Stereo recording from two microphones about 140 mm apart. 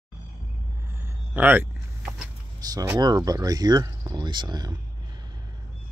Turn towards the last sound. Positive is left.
turn(degrees=-30)  # may be behind; listen again after turning